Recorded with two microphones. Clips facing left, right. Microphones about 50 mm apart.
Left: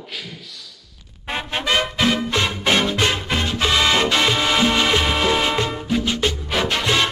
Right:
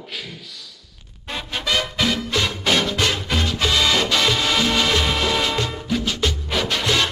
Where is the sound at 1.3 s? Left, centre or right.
Left.